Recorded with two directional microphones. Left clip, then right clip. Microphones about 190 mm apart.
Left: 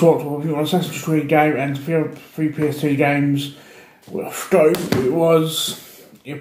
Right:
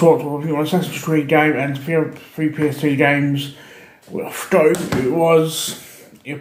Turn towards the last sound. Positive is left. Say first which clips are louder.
# right 2 dB
turn(degrees=-5)  # may be behind; listen again after turning